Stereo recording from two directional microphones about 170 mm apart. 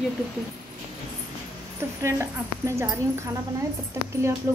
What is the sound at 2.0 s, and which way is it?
A woman's voice, 15° right (ahead or behind).